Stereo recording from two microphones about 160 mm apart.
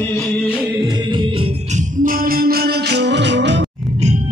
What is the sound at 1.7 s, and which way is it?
Music, 60° right (ahead or behind).